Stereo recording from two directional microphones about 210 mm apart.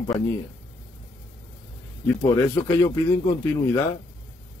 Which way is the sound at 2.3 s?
15° left (ahead or behind).